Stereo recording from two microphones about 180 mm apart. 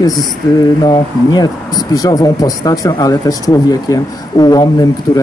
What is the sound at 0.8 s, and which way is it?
Speech, 20° left (ahead or behind).